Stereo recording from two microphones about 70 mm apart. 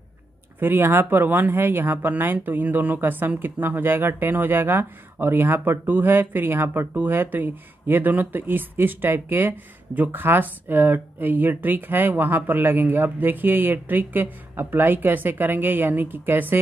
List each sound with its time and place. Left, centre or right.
0.6 s speech: right